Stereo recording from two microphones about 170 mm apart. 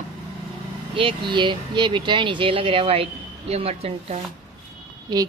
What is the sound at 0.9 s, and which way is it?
Speech, 30° right (ahead or behind).